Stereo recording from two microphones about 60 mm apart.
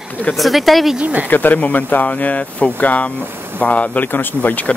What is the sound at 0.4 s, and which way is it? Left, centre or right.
Speech, centre.